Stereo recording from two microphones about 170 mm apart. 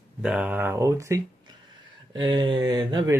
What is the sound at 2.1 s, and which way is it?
Speech, 30° right (ahead or behind).